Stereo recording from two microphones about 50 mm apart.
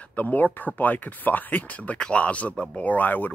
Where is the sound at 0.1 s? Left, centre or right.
Left.